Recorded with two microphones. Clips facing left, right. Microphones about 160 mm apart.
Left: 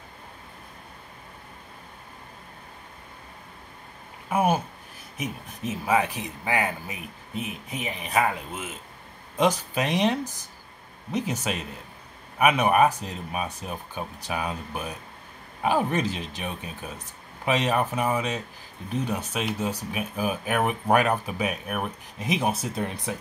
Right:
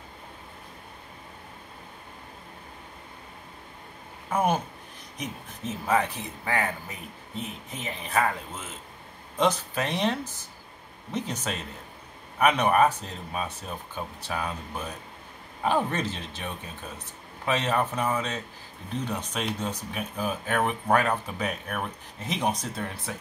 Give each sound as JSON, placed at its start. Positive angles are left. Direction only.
{"t": 4.3, "sound": "a sound", "side_deg": 10}
{"t": 5.1, "sound": "speech", "side_deg": 10}
{"t": 23.1, "sound": "speech", "side_deg": 20}